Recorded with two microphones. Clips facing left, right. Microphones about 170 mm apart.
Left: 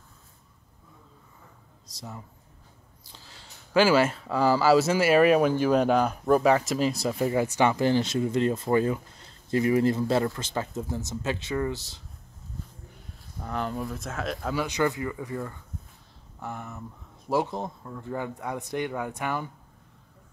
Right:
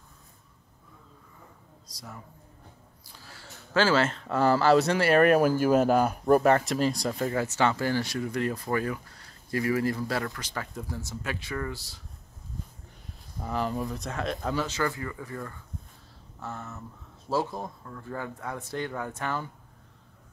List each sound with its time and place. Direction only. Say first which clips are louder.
2.0 s speech: left 3 dB; 20° left (ahead or behind)
13.4 s speech: right 1 dB; centre (ahead or behind)
14.6 s a man's voice: left 3 dB; 20° left (ahead or behind)